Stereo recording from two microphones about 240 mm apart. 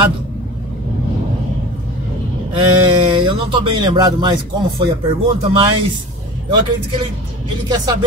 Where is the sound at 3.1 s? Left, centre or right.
Right.